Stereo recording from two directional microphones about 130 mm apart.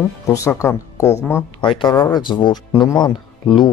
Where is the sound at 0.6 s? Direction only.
20° left (ahead or behind).